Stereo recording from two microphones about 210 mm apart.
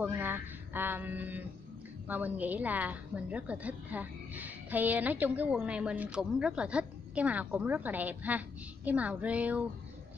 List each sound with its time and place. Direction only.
0.0 s a woman's voice: 10° right (ahead or behind)